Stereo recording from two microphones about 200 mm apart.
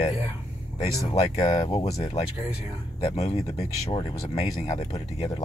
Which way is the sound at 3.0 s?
30° left (ahead or behind).